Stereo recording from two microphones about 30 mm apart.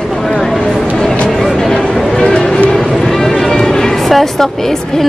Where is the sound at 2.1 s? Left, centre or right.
Centre.